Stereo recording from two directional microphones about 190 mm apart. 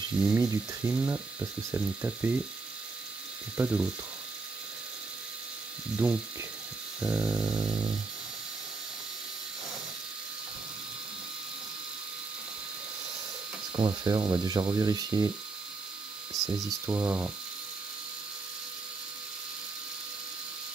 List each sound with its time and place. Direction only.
0.3 s speech: 15° right (ahead or behind)
3.5 s speech: 10° right (ahead or behind)
6.0 s speech: 5° right (ahead or behind)
13.7 s speech: 25° right (ahead or behind)
16.8 s speech: 10° right (ahead or behind)